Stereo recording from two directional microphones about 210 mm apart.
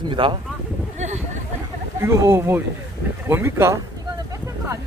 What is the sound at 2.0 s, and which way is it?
Speech, 15° right (ahead or behind).